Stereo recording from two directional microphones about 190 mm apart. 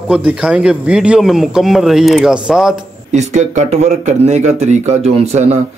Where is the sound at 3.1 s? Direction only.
40° right (ahead or behind).